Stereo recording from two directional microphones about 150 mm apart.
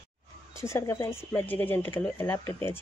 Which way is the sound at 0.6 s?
20° left (ahead or behind).